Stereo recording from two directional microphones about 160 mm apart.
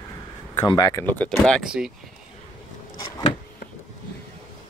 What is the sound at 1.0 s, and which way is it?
Speech, 10° left (ahead or behind).